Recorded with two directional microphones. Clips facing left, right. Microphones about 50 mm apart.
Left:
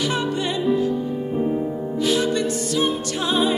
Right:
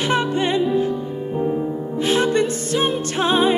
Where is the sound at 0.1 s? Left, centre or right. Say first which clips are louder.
Right 4 dB; right.